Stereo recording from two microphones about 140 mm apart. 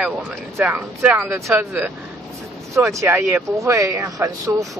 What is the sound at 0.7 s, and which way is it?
Speech, 15° right (ahead or behind).